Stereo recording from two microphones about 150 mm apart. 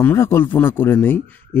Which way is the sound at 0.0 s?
15° left (ahead or behind).